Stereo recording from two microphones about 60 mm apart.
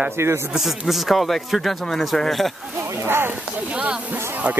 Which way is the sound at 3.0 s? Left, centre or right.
Right.